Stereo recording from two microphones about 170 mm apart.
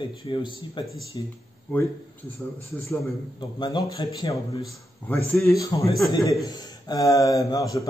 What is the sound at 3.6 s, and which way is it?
Speech, 25° left (ahead or behind).